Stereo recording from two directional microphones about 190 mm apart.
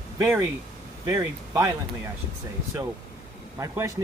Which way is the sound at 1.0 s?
15° right (ahead or behind).